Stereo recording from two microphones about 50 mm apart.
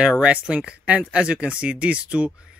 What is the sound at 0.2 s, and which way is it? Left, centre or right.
Speech, right.